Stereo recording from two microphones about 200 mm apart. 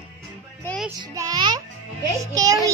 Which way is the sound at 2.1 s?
15° right (ahead or behind).